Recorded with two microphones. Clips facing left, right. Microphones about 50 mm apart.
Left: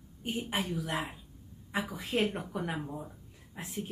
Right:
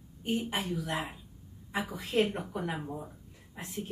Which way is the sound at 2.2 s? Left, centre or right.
Centre.